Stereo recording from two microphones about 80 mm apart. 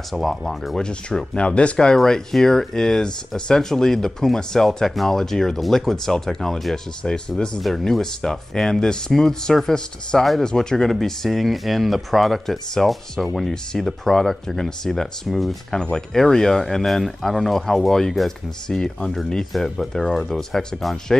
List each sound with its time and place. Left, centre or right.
0.1 s speech: centre